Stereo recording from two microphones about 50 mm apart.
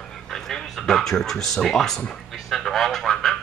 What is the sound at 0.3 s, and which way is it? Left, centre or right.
Speech, centre.